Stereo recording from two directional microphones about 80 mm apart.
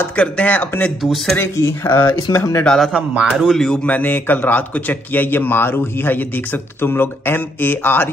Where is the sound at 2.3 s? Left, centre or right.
Left.